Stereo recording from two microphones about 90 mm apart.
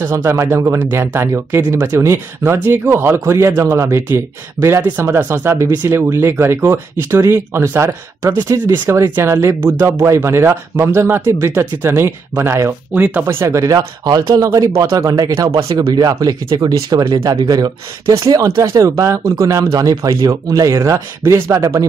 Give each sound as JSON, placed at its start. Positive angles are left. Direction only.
{"t": 0.0, "sound": "speech", "side_deg": -25}
{"t": 13.7, "sound": "speech", "side_deg": -50}